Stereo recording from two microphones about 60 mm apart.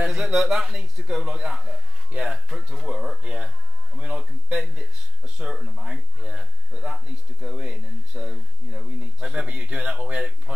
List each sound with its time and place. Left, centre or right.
0.0 s speech: centre